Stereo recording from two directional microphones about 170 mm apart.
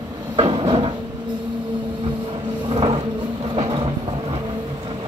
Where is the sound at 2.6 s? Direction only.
30° right (ahead or behind).